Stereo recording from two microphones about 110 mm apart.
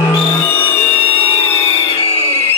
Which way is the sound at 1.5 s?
60° left (ahead or behind).